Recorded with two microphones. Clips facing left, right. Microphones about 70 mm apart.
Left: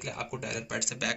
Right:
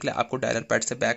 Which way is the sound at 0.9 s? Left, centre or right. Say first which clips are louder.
Right 9 dB; right.